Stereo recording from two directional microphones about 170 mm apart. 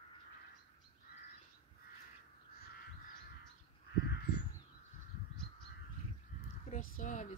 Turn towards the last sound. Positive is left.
turn(degrees=45)  # may be behind; listen again after turning